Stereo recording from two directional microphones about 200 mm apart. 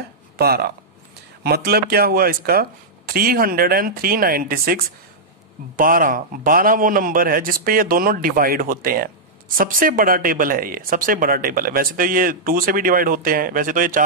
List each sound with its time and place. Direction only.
0.4 s speech: 50° right (ahead or behind)